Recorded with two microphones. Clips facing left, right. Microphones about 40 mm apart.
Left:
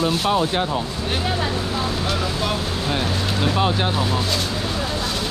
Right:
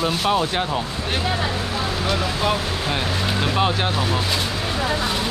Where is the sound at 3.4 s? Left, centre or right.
Centre.